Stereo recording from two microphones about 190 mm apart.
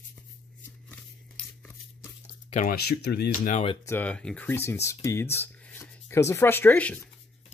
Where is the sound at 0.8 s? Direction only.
5° left (ahead or behind).